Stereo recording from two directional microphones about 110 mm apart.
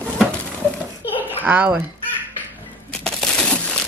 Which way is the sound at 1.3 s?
15° right (ahead or behind).